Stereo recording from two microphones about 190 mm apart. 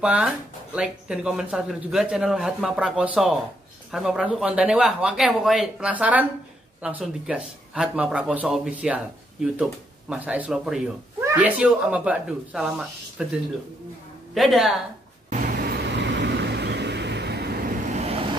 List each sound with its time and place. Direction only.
0.0 s speech: 5° right (ahead or behind)
15.2 s vehicle: 40° right (ahead or behind); by 17.7 s 60° right (ahead or behind)
17.9 s vehicle: 30° right (ahead or behind)